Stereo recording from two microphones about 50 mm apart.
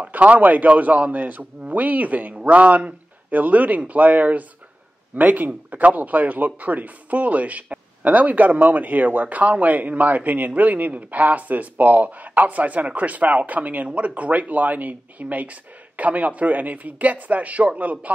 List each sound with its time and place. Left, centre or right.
0.0 s a man's voice: right